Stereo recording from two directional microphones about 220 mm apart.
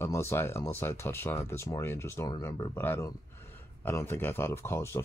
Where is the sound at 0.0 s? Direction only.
10° left (ahead or behind).